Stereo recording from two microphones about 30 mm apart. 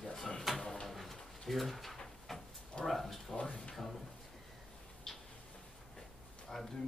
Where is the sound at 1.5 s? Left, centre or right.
Centre.